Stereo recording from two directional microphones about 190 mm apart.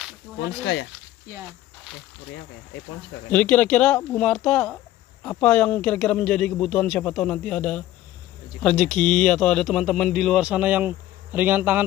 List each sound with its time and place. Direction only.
0.4 s speech: 70° left (ahead or behind)
3.3 s speech: 5° left (ahead or behind); by 11.8 s 10° right (ahead or behind)